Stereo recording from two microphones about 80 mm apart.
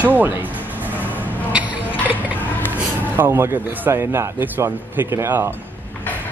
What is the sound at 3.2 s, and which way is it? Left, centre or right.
Speech, right.